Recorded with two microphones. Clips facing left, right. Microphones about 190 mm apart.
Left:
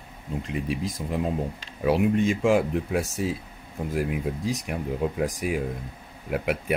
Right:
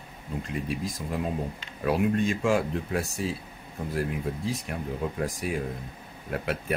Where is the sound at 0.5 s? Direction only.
15° left (ahead or behind).